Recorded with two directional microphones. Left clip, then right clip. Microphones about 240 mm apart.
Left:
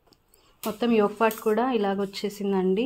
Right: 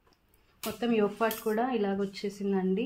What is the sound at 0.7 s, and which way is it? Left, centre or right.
Speech, left.